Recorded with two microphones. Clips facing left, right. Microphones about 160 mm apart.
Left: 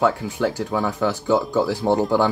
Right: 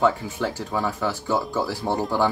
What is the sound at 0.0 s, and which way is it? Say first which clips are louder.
Speech: left 2 dB; 15° left (ahead or behind).